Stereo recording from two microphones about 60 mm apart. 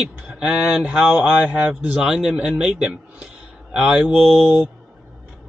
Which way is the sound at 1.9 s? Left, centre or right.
Centre.